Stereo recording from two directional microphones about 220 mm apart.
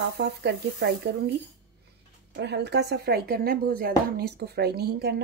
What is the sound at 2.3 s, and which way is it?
Speech, 50° right (ahead or behind).